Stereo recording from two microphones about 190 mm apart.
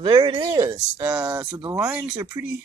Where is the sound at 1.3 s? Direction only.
20° right (ahead or behind).